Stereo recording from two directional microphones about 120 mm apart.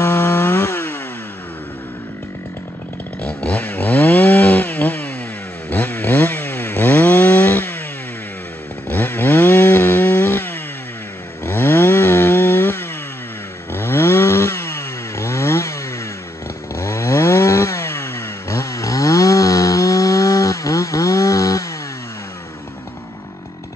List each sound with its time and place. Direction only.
0.0 s chainsaw: 20° left (ahead or behind)
3.2 s chainsaw: 10° left (ahead or behind)
8.8 s chainsaw: 15° left (ahead or behind)
16.7 s chainsaw: 25° left (ahead or behind)